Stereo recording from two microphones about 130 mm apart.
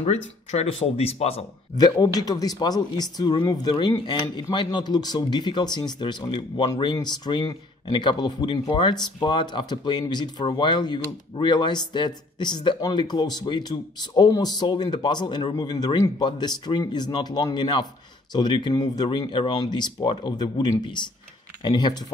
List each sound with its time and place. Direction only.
0.0 s speech: 55° left (ahead or behind)
1.8 s speech: 30° left (ahead or behind)